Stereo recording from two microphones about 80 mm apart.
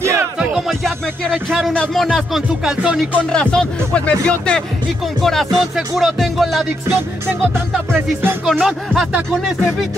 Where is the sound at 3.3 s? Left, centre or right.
Centre.